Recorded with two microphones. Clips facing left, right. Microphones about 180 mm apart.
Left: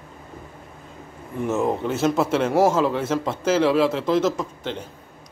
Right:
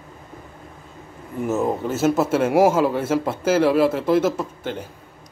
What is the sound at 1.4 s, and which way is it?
A man's voice, centre (ahead or behind).